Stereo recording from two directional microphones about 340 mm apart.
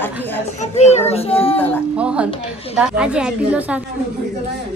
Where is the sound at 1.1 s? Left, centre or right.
Centre.